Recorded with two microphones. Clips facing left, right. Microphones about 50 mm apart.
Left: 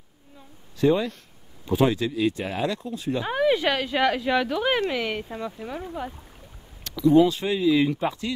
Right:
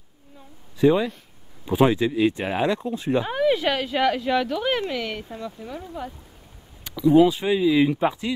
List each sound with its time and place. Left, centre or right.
0.7 s speech: centre; by 3.3 s right
3.3 s speech: centre
6.8 s speech: centre